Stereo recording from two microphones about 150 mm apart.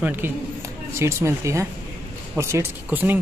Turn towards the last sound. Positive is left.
turn(degrees=-10)  # may be behind; listen again after turning